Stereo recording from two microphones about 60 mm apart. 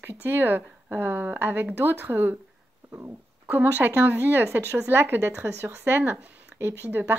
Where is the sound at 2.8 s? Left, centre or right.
Right.